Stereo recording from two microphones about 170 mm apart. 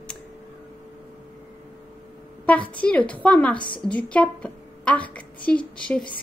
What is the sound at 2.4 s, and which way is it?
A woman's voice, 10° left (ahead or behind).